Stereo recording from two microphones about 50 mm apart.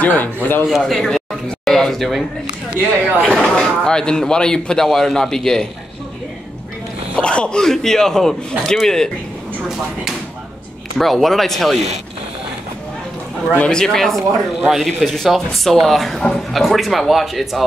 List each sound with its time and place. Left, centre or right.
0.0 s speech: left
0.7 s a man's voice: centre
3.2 s speech: centre
7.2 s speech: left
7.6 s speech: centre
11.0 s speech: centre
13.7 s speech: centre